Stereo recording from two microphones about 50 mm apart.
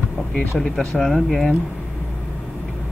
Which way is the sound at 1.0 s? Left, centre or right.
Centre.